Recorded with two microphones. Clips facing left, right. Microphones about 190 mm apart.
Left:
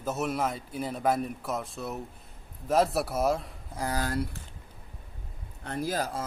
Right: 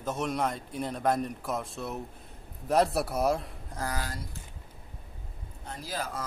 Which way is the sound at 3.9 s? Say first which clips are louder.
Left 7 dB; 60° left (ahead or behind).